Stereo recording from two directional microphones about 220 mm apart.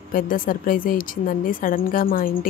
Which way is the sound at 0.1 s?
40° left (ahead or behind).